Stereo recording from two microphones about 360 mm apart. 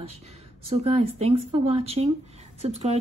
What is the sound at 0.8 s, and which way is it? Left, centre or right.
Speech, centre.